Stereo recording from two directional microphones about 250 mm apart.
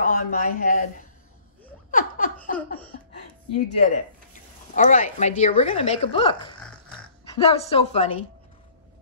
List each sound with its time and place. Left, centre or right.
0.0 s speech: left
1.9 s laughter: left
3.6 s a woman's voice: left